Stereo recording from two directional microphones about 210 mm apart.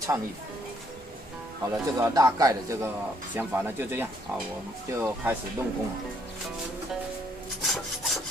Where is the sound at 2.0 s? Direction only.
15° right (ahead or behind).